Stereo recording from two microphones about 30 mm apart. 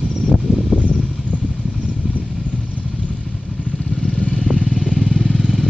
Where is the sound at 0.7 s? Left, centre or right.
Right.